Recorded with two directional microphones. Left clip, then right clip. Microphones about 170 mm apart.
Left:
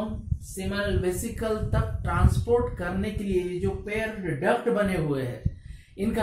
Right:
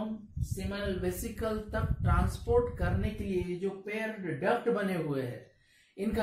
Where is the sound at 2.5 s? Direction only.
10° right (ahead or behind).